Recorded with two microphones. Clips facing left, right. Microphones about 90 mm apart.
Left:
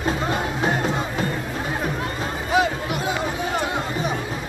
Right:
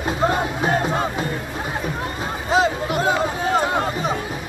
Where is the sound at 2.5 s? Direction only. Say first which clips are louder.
Right 2 dB; 30° right (ahead or behind).